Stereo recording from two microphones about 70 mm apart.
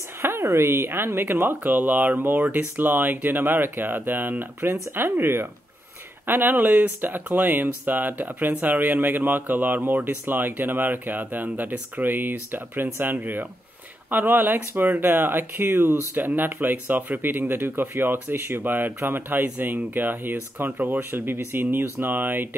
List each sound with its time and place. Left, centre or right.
0.2 s speech: right
15.8 s speech: right
16.2 s speech: right